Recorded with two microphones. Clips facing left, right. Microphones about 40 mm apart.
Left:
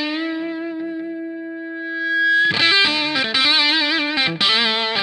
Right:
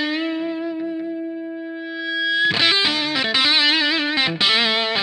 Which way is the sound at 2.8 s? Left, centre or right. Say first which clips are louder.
Left 2 dB; left.